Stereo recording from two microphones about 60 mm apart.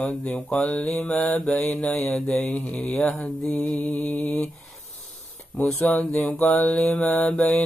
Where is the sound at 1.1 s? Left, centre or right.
Left.